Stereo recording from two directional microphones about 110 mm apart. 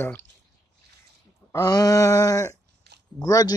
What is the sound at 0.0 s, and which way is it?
Speech, 20° left (ahead or behind).